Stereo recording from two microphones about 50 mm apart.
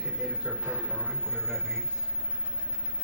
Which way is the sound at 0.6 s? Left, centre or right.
Right.